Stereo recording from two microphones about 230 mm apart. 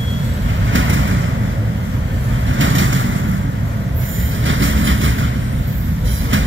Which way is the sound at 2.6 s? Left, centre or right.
Right.